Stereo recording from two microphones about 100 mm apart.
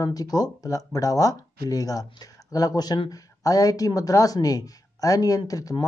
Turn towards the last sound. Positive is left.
turn(degrees=35)  # may be behind; listen again after turning